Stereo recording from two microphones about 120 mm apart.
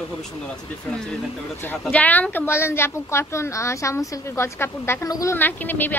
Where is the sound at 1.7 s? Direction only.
15° left (ahead or behind).